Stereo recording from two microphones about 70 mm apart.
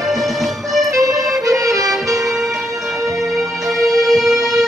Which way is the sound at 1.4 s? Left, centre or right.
Right.